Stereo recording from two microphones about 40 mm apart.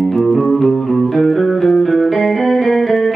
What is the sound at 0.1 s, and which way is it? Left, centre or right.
Music, centre.